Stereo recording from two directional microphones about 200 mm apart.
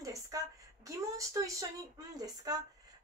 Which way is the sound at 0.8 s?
15° right (ahead or behind).